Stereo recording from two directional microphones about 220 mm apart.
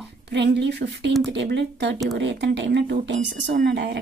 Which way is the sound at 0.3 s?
50° right (ahead or behind).